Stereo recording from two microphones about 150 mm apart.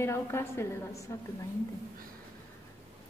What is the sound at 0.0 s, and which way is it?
A woman's voice, 15° left (ahead or behind).